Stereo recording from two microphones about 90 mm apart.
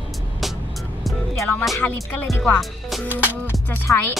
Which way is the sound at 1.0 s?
Centre (ahead or behind).